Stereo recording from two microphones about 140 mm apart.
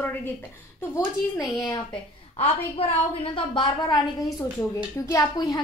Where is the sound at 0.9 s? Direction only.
20° left (ahead or behind).